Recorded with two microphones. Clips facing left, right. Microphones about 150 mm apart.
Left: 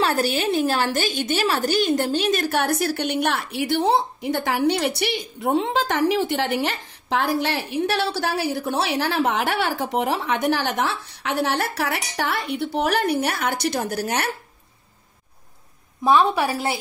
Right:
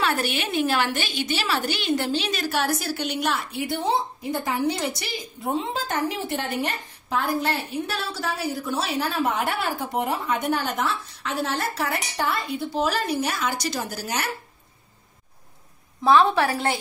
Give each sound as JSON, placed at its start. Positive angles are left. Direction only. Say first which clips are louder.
{"t": 0.0, "sound": "a woman's voice", "louder": "left 4 dB", "side_deg": 35}
{"t": 16.0, "sound": "a woman's voice", "louder": "even", "side_deg": 15}